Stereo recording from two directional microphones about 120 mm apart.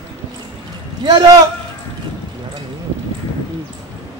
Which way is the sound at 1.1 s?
30° right (ahead or behind).